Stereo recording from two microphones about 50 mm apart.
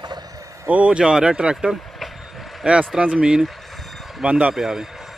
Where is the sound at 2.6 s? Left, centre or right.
Right.